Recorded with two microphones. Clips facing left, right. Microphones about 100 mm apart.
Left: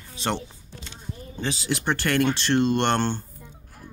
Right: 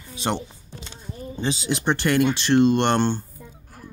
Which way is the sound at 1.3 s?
20° right (ahead or behind).